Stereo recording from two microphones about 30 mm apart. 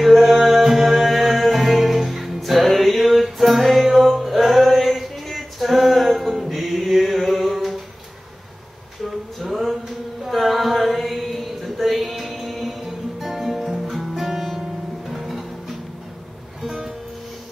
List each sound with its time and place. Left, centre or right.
0.0 s music: centre
9.6 s mantra: centre
11.8 s music: centre
14.1 s music: centre
16.6 s music: centre